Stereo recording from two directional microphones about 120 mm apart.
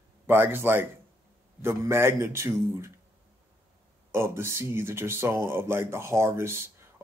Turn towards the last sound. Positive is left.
turn(degrees=-20)  # may be behind; listen again after turning